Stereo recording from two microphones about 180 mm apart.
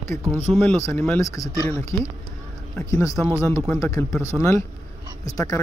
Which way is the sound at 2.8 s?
15° left (ahead or behind).